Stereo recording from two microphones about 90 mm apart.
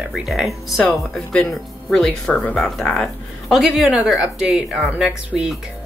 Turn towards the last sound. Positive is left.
turn(degrees=-5)  # may be behind; listen again after turning